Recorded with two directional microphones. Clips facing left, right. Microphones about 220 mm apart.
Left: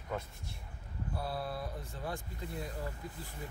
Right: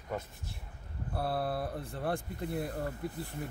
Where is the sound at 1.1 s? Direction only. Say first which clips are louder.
Right 6 dB; 60° right (ahead or behind).